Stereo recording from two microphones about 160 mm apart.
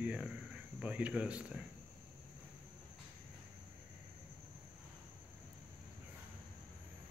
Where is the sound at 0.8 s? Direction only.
10° right (ahead or behind).